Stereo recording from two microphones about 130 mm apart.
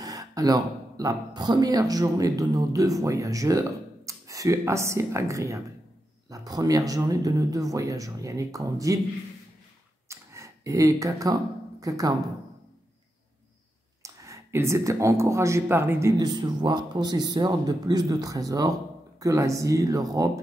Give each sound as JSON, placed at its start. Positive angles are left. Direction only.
{"t": 0.0, "sound": "speech", "side_deg": -30}
{"t": 10.0, "sound": "a sound", "side_deg": -25}
{"t": 14.0, "sound": "speech", "side_deg": -25}
{"t": 16.2, "sound": "speech", "side_deg": -35}